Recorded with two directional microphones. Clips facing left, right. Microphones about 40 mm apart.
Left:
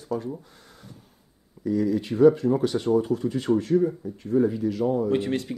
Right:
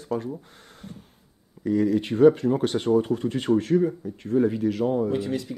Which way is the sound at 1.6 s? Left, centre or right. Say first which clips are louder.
Right 2 dB; right.